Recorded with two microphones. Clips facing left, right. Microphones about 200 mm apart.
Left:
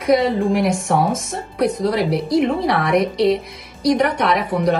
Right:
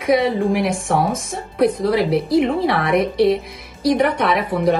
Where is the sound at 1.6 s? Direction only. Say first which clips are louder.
Right 2 dB; 55° right (ahead or behind).